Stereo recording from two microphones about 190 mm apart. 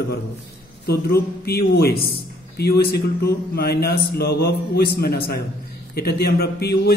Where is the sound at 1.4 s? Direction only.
55° left (ahead or behind).